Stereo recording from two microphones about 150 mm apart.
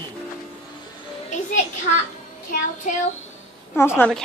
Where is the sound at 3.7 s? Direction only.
15° left (ahead or behind).